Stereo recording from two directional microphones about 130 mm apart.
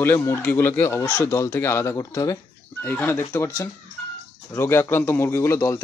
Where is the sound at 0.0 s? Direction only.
20° left (ahead or behind).